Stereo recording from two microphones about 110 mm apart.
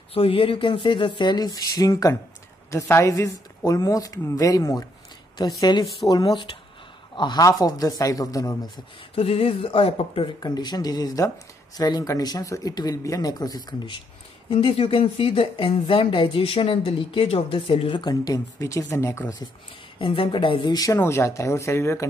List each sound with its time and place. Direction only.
0.1 s a woman's voice: 60° left (ahead or behind); by 8.5 s 30° left (ahead or behind)
9.1 s speech: 60° left (ahead or behind)
10.4 s speech: 40° left (ahead or behind)
14.5 s speech: 60° left (ahead or behind); by 19.3 s 25° left (ahead or behind)
20.0 s speech: 50° left (ahead or behind)
20.7 s a woman's voice: 30° left (ahead or behind)